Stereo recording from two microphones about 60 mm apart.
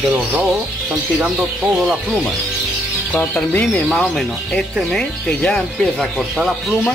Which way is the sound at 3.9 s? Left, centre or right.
Centre.